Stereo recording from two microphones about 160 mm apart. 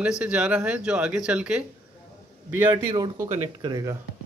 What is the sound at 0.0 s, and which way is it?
Speech, 5° right (ahead or behind).